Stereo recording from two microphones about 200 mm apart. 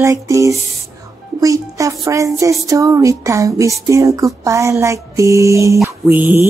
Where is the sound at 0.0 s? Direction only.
15° right (ahead or behind).